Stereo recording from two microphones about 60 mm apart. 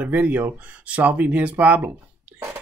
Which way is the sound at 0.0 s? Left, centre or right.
Right.